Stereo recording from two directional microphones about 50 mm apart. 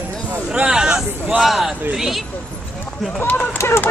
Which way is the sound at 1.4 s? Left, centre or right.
Centre.